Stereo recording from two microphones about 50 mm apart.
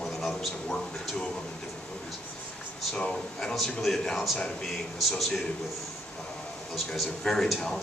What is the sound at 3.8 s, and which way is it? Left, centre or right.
A man's voice, centre.